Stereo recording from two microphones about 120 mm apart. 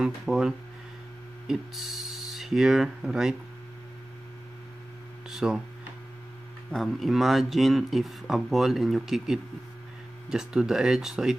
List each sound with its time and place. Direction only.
0.0 s speech: 5° right (ahead or behind)
5.3 s speech: 5° right (ahead or behind)
6.7 s speech: centre (ahead or behind)